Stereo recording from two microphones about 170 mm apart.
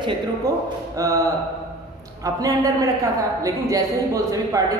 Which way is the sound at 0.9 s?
20° right (ahead or behind).